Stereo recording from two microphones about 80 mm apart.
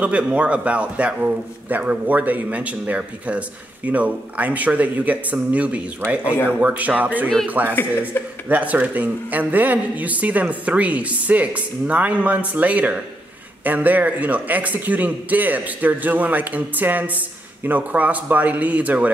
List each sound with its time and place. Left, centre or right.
0.0 s a man's voice: centre
8.2 s speech: left
8.5 s a man's voice: centre